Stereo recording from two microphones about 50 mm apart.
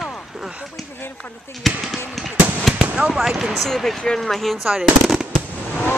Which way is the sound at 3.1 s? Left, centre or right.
Centre.